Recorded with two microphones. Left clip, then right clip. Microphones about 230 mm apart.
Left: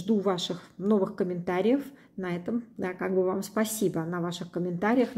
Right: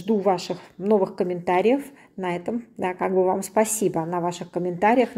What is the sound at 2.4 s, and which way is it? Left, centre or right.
A woman's voice, right.